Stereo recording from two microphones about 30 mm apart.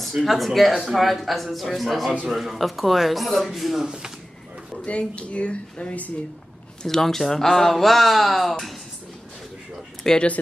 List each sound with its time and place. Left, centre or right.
0.0 s speech: centre
4.8 s speech: left
6.8 s speech: centre
10.1 s speech: centre